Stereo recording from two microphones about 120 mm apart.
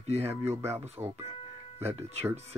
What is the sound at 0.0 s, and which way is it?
Speech, 60° right (ahead or behind).